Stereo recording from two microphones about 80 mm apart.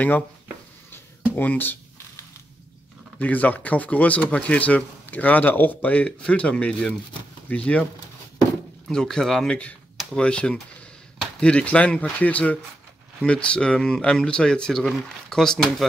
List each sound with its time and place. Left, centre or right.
1.3 s speech: left
3.2 s speech: centre
8.9 s speech: centre